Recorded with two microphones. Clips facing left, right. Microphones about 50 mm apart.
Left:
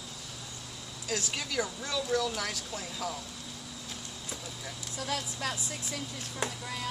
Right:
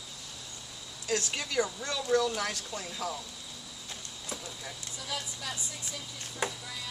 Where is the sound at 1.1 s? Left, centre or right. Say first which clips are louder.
Right 2 dB; centre.